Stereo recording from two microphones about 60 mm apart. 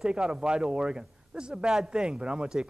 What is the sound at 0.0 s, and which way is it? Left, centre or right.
Speech, centre.